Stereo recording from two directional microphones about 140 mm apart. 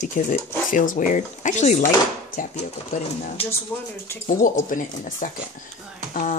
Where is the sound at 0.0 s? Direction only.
65° left (ahead or behind).